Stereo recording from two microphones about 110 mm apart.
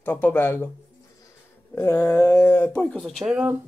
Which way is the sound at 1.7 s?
25° left (ahead or behind).